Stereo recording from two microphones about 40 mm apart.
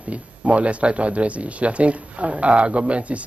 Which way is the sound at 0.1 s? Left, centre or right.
Right.